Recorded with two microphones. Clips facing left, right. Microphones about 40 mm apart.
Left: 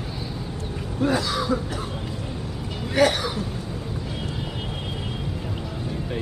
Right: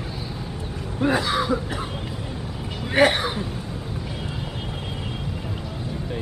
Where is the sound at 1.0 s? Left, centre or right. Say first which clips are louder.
Right 2 dB; right.